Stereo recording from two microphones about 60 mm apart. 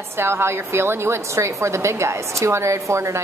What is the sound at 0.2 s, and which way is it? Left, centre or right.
A woman's voice, right.